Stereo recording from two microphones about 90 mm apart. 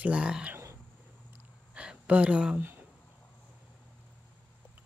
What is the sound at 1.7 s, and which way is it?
Speech, 15° right (ahead or behind).